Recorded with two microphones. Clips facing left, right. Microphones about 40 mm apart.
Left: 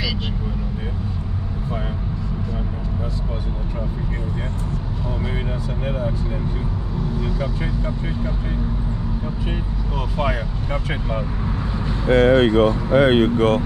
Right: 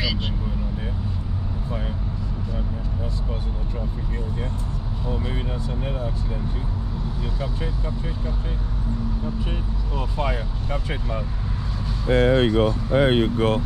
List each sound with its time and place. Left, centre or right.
10.1 s vehicle: left
12.1 s vehicle: left
12.9 s speech: left